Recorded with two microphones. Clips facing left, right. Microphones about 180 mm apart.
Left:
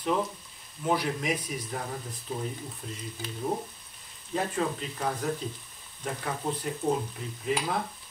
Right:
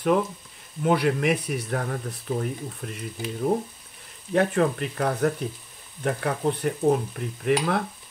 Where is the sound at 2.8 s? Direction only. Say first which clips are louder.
Right 4 dB; 70° right (ahead or behind).